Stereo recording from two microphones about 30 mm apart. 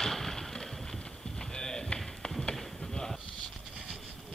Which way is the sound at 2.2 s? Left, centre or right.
Left.